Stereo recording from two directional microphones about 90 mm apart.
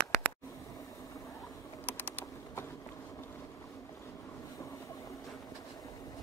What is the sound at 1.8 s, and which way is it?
Typing, 20° left (ahead or behind).